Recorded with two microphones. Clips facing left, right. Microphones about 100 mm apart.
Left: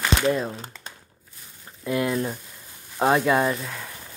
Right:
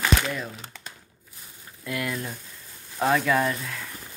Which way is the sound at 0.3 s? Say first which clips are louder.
Left 8 dB; 35° left (ahead or behind).